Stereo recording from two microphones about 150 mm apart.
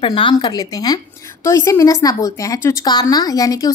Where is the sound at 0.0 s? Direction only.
35° left (ahead or behind).